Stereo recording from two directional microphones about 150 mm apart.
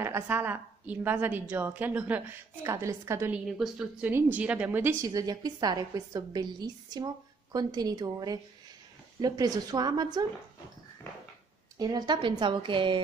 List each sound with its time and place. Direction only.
0.0 s a woman's voice: 15° right (ahead or behind)
3.4 s a woman's voice: 5° right (ahead or behind); by 10.2 s 25° right (ahead or behind)
11.8 s a woman's voice: 30° right (ahead or behind)